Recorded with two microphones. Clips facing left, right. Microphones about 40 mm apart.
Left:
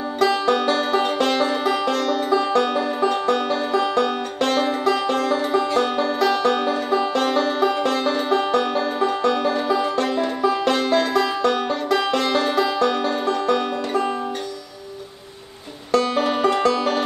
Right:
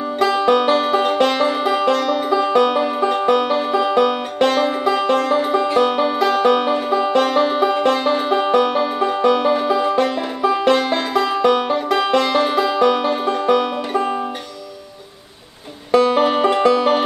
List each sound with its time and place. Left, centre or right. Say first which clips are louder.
0.2 s music: right 3 dB; centre
15.9 s music: right 5 dB; centre